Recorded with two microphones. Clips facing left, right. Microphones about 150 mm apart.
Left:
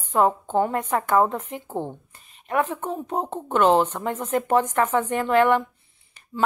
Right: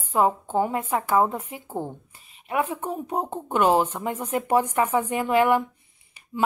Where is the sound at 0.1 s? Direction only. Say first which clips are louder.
Left 1 dB; 5° right (ahead or behind).